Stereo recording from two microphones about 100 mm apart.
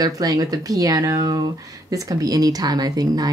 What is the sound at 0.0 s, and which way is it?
Speech, 35° right (ahead or behind).